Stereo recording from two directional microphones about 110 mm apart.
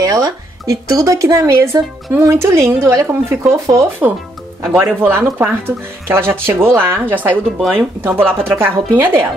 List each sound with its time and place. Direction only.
0.0 s speech: 30° right (ahead or behind)